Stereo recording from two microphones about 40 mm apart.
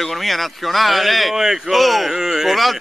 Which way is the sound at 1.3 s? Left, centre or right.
Centre.